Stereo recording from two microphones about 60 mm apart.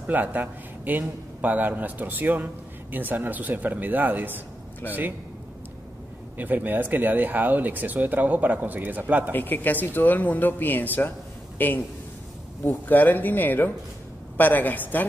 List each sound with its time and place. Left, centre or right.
0.0 s a man's voice: right
6.3 s a man's voice: right
9.3 s speech: left
12.8 s speech: left